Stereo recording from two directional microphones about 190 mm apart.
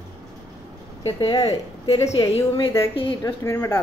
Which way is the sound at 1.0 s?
25° left (ahead or behind).